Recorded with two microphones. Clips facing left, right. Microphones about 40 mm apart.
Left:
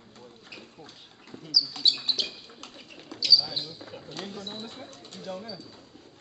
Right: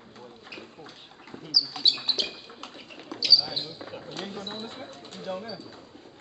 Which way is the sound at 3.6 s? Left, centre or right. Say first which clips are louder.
Right 2 dB; right.